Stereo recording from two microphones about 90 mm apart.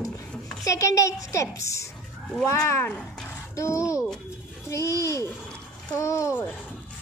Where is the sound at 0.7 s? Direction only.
40° left (ahead or behind).